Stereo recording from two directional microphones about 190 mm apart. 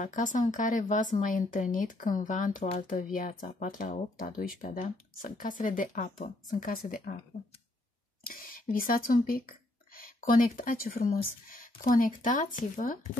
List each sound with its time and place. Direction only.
0.0 s speech: 45° left (ahead or behind)
8.2 s speech: 50° left (ahead or behind)